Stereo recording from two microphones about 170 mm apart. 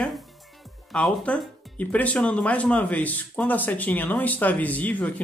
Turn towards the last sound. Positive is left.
turn(degrees=10)  # may be behind; listen again after turning